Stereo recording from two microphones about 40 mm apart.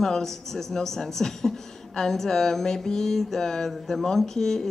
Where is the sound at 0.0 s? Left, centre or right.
Centre.